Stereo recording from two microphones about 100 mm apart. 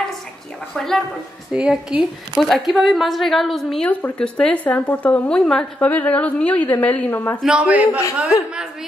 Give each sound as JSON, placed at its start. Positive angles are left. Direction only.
{"t": 0.7, "sound": "speech", "side_deg": 5}
{"t": 1.5, "sound": "a woman's voice", "side_deg": -10}
{"t": 2.3, "sound": "speech", "side_deg": 5}
{"t": 3.9, "sound": "a woman's voice", "side_deg": 10}
{"t": 7.4, "sound": "a woman's voice", "side_deg": -10}